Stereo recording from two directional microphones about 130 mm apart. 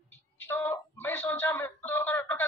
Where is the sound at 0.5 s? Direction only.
15° left (ahead or behind).